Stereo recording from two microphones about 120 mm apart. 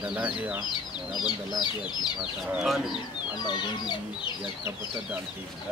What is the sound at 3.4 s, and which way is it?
Speech, 40° left (ahead or behind).